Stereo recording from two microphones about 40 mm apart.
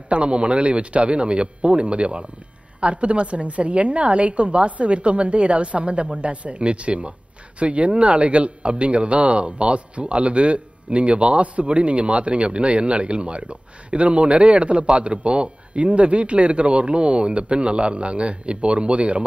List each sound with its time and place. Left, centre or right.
0.1 s a woman's voice: right